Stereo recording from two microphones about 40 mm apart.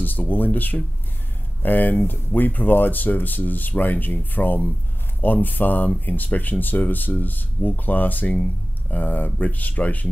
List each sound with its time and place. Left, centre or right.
0.0 s speech: left